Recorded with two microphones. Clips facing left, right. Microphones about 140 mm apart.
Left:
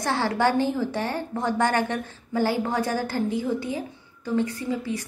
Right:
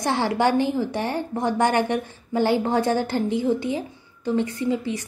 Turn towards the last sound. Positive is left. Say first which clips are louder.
# right 4 dB
turn(degrees=-20)  # may be behind; listen again after turning